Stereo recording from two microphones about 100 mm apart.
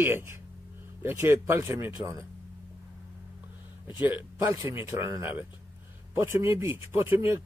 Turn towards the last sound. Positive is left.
turn(degrees=-20)  # may be behind; listen again after turning